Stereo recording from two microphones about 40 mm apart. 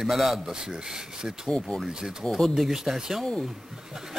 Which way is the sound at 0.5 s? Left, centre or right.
Centre.